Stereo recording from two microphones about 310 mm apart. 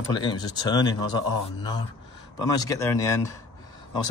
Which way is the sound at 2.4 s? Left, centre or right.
Centre.